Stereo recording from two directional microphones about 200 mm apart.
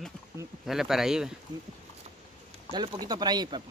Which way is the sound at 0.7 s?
Centre (ahead or behind).